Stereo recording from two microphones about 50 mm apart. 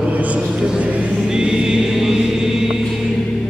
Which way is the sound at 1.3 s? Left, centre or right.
Centre.